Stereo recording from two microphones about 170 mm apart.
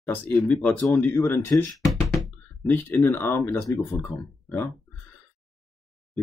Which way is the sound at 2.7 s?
10° left (ahead or behind).